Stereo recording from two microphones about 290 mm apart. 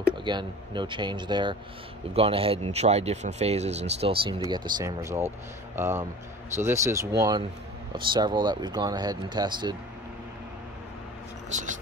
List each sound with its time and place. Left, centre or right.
0.2 s speech: centre
6.5 s speech: centre
11.5 s speech: right